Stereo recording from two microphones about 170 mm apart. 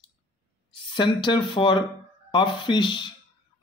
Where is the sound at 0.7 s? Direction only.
30° left (ahead or behind).